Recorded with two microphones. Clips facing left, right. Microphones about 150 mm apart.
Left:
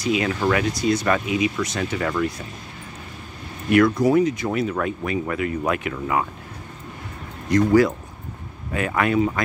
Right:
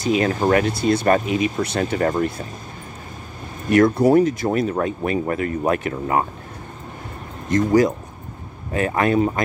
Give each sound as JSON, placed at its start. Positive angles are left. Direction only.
{"t": 0.0, "sound": "speech", "side_deg": -45}
{"t": 0.7, "sound": "speech", "side_deg": -55}
{"t": 1.8, "sound": "speech", "side_deg": -40}
{"t": 3.7, "sound": "speech", "side_deg": -40}
{"t": 7.4, "sound": "speech", "side_deg": -45}
{"t": 8.7, "sound": "speech", "side_deg": -35}